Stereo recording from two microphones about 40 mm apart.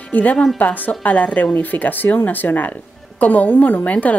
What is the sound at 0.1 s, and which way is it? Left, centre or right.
A woman's voice, left.